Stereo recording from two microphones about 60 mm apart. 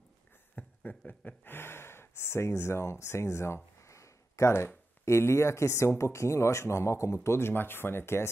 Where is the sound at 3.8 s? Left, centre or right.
Left.